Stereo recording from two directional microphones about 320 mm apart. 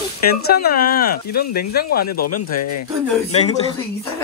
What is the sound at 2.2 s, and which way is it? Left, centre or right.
Speech, left.